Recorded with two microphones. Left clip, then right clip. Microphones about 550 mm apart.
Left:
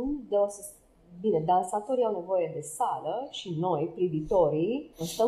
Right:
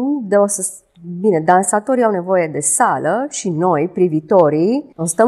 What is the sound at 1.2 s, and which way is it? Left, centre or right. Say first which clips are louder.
A woman's voice: right 12 dB; right.